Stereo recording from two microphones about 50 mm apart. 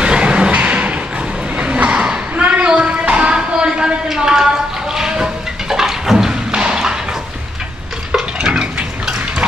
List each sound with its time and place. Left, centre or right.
0.0 s music: right
1.6 s a sound: right
4.9 s thump: centre
8.1 s stir: centre